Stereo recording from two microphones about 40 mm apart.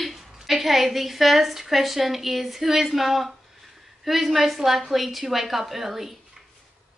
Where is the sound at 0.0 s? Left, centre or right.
Centre.